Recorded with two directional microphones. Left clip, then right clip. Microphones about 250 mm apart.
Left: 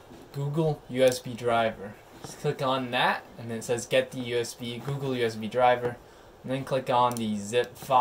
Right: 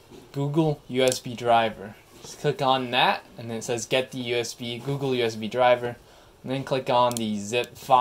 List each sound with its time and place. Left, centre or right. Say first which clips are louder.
0.6 s speech: right 1 dB; right